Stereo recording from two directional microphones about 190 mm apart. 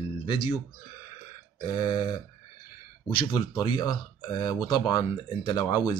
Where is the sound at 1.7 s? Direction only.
25° left (ahead or behind).